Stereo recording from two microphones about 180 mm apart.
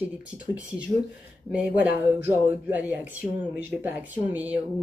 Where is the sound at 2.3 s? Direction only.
10° right (ahead or behind).